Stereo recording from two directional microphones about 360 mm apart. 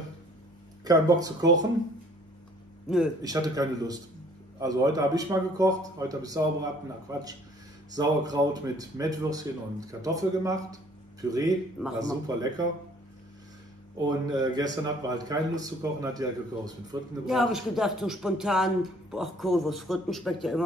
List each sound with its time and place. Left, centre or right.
0.8 s speech: centre
2.9 s speech: centre
14.0 s speech: centre